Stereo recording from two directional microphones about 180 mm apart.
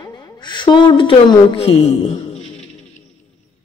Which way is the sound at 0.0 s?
20° left (ahead or behind).